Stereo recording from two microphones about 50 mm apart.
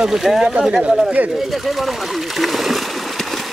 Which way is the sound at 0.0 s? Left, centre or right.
Centre.